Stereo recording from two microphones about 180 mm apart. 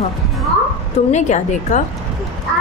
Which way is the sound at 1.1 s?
40° left (ahead or behind).